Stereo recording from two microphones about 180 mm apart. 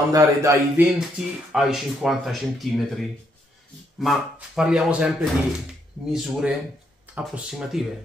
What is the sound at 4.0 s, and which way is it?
Speech, centre (ahead or behind).